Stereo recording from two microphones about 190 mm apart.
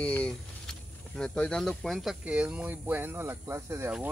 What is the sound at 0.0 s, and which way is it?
Speech, 5° left (ahead or behind).